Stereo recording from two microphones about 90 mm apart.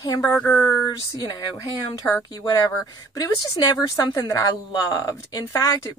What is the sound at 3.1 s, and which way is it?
Speech, 45° left (ahead or behind).